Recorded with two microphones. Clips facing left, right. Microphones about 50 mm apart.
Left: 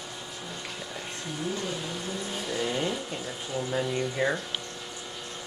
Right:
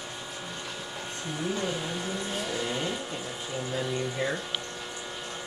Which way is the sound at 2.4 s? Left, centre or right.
Centre.